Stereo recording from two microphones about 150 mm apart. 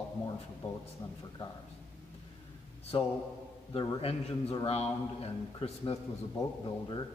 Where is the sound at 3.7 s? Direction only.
40° left (ahead or behind).